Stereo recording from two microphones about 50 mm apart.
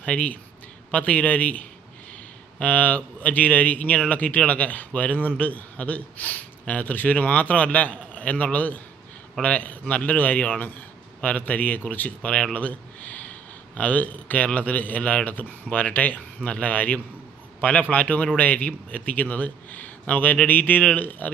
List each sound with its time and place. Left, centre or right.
0.0 s speech: left
2.6 s a man's voice: left
12.2 s a man's voice: left